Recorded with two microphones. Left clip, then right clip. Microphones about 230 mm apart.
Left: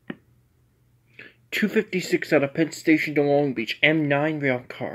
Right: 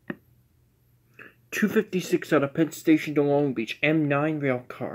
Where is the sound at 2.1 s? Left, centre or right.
Centre.